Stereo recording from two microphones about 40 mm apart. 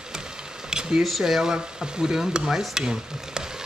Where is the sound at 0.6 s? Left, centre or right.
Centre.